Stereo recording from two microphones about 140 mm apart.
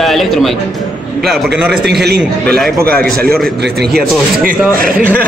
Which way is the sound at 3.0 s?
90° right.